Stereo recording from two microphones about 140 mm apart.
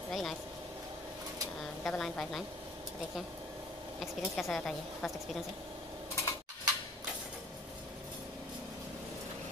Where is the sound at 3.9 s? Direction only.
Centre (ahead or behind).